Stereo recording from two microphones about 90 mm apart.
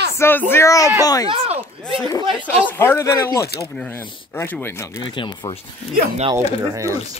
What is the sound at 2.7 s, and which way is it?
Speech, 25° left (ahead or behind).